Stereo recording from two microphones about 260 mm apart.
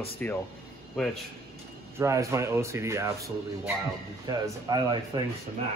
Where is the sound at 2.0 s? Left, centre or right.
Centre.